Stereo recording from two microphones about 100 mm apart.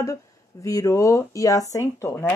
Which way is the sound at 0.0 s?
30° left (ahead or behind).